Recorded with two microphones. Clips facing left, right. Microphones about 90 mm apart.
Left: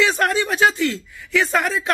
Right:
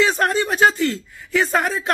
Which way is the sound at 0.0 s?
35° right (ahead or behind).